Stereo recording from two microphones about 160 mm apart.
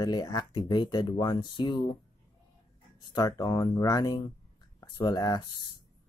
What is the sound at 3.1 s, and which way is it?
Speech, 25° left (ahead or behind).